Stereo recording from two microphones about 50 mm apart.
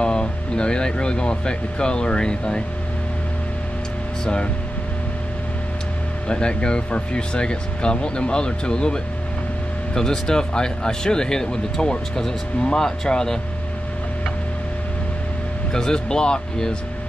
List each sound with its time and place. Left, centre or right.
0.0 s speech: centre
4.2 s speech: centre
6.2 s speech: centre
15.7 s speech: centre